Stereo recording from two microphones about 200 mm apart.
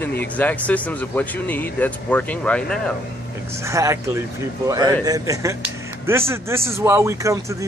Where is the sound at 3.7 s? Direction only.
15° right (ahead or behind).